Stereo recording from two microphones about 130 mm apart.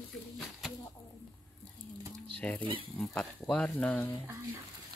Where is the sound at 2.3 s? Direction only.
10° left (ahead or behind).